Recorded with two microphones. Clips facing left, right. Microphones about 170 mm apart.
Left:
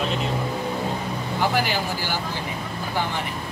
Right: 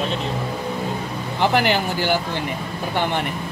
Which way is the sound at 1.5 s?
65° right (ahead or behind).